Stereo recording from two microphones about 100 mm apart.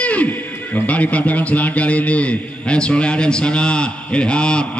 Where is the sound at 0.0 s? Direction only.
15° left (ahead or behind).